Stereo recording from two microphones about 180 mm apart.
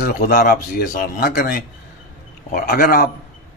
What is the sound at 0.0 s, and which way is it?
Speech, 60° left (ahead or behind).